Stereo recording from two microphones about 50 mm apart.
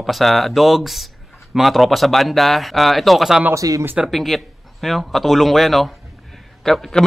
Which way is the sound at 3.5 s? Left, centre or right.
Right.